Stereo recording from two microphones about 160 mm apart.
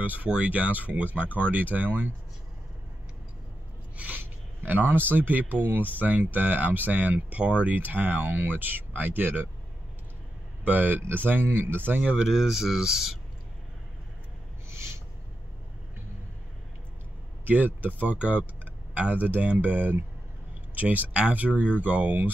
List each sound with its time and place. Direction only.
0.0 s speech: 10° right (ahead or behind)
3.9 s a sound: 10° right (ahead or behind)
5.1 s speech: 10° right (ahead or behind)
10.6 s speech: 10° right (ahead or behind)
14.7 s owl: 15° right (ahead or behind)
17.5 s speech: 10° right (ahead or behind)